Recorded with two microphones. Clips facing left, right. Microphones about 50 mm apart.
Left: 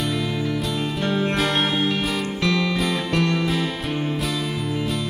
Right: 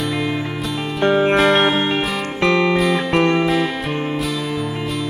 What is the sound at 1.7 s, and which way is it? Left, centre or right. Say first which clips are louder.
Music: right 4 dB; right.